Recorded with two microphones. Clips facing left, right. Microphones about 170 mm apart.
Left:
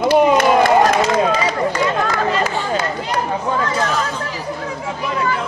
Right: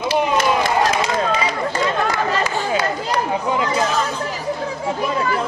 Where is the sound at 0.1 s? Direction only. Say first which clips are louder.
Left 5 dB; 55° left (ahead or behind).